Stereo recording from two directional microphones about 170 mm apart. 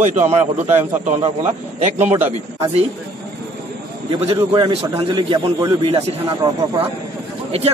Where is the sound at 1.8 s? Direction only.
40° right (ahead or behind).